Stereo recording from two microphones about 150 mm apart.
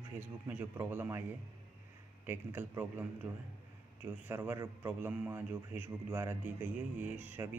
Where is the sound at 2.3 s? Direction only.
15° right (ahead or behind).